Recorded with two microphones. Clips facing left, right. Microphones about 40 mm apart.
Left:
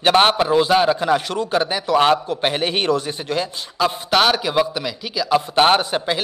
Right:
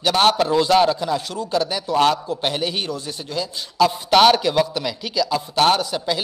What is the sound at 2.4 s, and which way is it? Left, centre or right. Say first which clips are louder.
Speech: left 3 dB; left.